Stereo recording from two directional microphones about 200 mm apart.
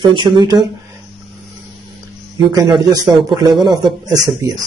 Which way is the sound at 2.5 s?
20° right (ahead or behind).